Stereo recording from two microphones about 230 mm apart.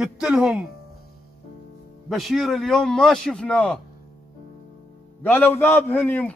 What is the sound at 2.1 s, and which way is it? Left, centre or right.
A man's voice, centre.